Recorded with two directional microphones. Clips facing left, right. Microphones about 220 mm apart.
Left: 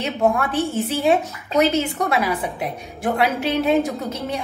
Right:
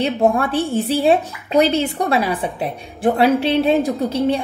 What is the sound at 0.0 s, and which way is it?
A woman's voice, 30° right (ahead or behind).